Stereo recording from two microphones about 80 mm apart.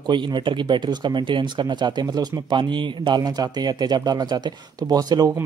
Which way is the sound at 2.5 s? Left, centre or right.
Right.